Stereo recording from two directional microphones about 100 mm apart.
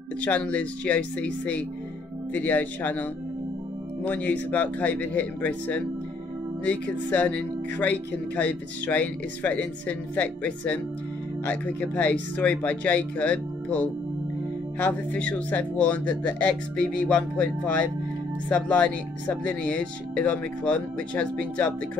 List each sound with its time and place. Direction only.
0.2 s speech: 15° left (ahead or behind)